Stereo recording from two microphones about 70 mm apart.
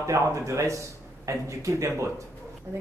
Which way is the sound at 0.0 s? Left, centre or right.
Right.